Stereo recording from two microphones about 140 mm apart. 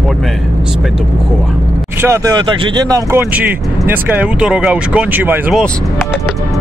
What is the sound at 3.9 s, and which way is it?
Speech, 10° right (ahead or behind).